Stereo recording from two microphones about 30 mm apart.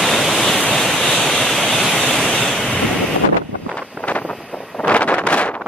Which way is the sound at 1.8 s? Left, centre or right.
Centre.